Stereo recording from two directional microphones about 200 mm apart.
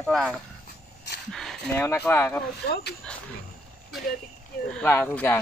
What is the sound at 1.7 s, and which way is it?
Speech, 10° left (ahead or behind).